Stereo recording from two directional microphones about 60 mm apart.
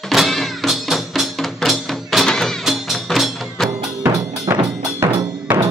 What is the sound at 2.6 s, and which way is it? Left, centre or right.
Music, centre.